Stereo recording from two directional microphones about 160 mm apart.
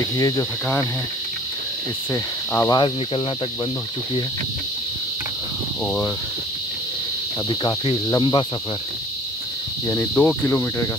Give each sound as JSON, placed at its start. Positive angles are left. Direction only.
{"t": 0.0, "sound": "cricket", "side_deg": 20}
{"t": 2.5, "sound": "cricket", "side_deg": 20}
{"t": 7.4, "sound": "cricket", "side_deg": 30}
{"t": 9.8, "sound": "cricket", "side_deg": 15}